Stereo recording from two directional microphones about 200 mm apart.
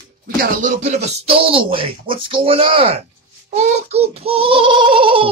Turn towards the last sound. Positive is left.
turn(degrees=-25)  # may be behind; listen again after turning